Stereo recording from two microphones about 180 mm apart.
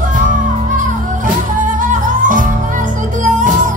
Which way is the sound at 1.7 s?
45° right (ahead or behind).